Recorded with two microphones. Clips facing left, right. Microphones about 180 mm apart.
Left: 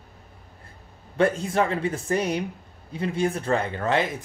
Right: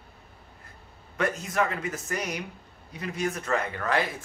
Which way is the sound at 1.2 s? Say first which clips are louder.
Left 5 dB; 30° left (ahead or behind).